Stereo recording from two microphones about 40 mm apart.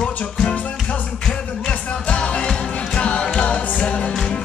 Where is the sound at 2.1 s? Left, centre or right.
Left.